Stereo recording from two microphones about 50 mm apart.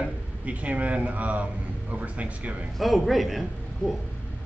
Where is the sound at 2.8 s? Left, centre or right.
Centre.